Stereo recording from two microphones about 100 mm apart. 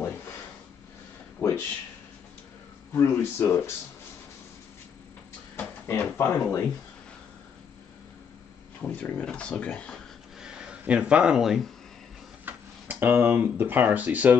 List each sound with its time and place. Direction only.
1.4 s a sound: 20° left (ahead or behind)
2.9 s speech: 25° left (ahead or behind)
5.6 s speech: 20° left (ahead or behind)
8.8 s speech: 15° left (ahead or behind)
10.4 s speech: 10° right (ahead or behind)
12.4 s speech: 20° right (ahead or behind)